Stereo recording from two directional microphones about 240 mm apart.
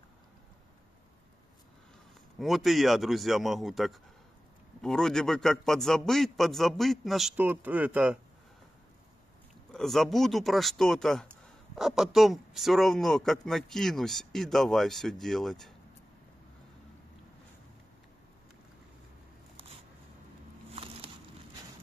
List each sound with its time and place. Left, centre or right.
2.3 s speech: centre
9.7 s speech: centre
20.7 s a sound: right